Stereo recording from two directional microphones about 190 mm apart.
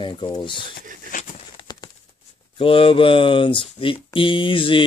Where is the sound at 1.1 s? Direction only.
45° left (ahead or behind).